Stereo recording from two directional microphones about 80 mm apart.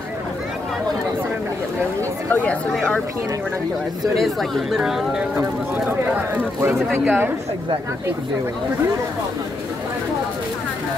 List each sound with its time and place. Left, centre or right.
4.0 s speech: centre
5.9 s speech: right